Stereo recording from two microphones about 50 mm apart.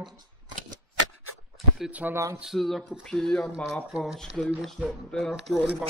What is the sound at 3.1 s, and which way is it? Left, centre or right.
Speech, centre.